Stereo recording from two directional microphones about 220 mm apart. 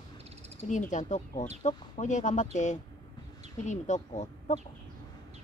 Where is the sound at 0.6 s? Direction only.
35° left (ahead or behind).